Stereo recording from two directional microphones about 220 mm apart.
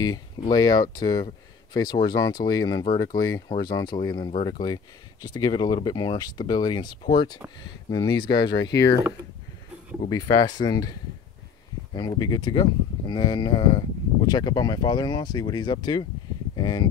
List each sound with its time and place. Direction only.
0.5 s speech: 15° left (ahead or behind)
8.6 s speech: 50° left (ahead or behind)
10.0 s speech: 20° left (ahead or behind)